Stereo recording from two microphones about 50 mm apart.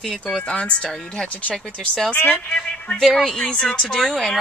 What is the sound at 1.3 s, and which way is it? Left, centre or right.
Speech, left.